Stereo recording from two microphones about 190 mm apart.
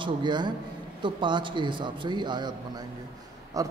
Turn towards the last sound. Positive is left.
turn(degrees=-20)  # may be behind; listen again after turning